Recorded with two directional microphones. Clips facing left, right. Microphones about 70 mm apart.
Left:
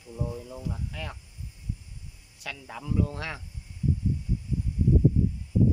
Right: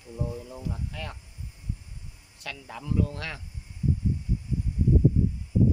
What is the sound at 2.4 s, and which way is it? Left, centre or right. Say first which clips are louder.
Speech: even; centre.